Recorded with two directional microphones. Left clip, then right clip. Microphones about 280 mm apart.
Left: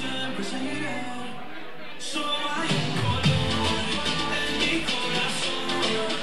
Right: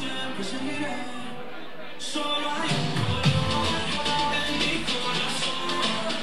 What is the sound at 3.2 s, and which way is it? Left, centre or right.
Music, right.